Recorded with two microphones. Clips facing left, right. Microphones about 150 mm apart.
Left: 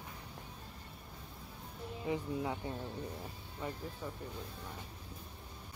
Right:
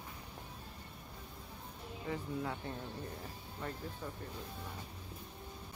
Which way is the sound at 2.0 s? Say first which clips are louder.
Left 3 dB; 15° left (ahead or behind).